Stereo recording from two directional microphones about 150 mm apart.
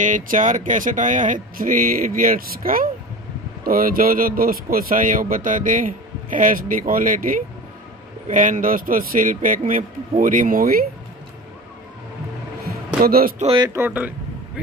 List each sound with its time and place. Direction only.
0.0 s speech: 60° right (ahead or behind); by 10.8 s 75° right (ahead or behind)
12.6 s music: 85° right
13.7 s speech: 10° right (ahead or behind)